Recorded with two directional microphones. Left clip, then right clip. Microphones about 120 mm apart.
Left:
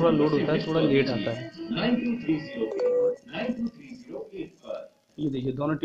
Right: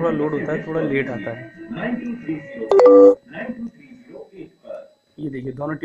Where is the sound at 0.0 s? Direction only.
15° left (ahead or behind).